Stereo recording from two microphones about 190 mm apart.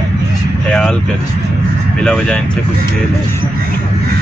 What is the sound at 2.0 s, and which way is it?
Speech, 5° left (ahead or behind).